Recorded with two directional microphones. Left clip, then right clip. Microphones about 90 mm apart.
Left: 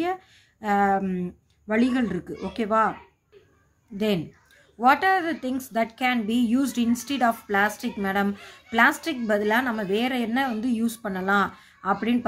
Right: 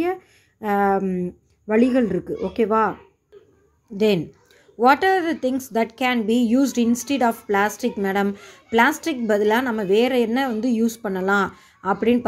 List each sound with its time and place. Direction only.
0.0 s speech: 35° right (ahead or behind)
1.0 s a woman's voice: 20° right (ahead or behind)
1.7 s a woman's voice: 35° right (ahead or behind)
3.9 s a woman's voice: 35° right (ahead or behind)